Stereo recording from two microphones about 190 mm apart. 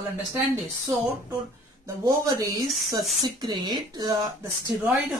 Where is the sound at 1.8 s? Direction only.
15° right (ahead or behind).